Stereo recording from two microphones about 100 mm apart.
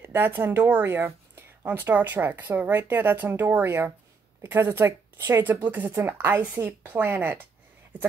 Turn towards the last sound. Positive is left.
turn(degrees=-20)  # may be behind; listen again after turning